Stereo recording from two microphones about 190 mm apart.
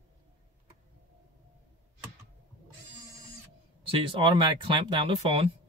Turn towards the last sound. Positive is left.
turn(degrees=-30)  # may be behind; listen again after turning